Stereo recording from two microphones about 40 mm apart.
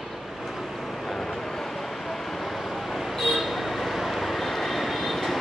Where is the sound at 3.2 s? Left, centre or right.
Centre.